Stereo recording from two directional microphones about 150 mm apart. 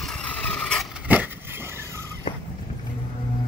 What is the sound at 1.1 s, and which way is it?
Vehicle, 15° right (ahead or behind).